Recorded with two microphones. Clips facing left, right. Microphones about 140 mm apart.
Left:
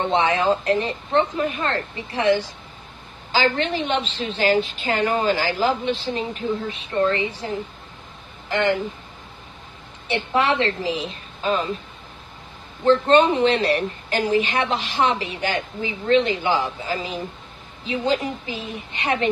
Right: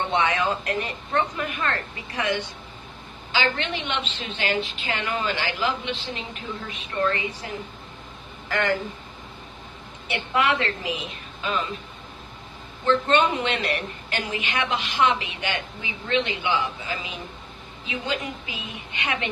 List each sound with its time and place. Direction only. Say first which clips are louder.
0.0 s a woman's voice: left 4 dB; 30° left (ahead or behind)
10.0 s a woman's voice: left 3 dB; 30° left (ahead or behind)
12.8 s a woman's voice: left 5 dB; 35° left (ahead or behind)